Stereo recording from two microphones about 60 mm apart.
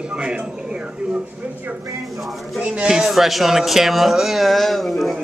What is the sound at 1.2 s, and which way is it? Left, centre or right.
Speech, right.